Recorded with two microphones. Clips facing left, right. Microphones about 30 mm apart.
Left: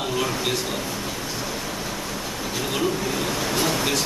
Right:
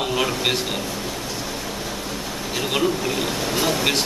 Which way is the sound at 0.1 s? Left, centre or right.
Right.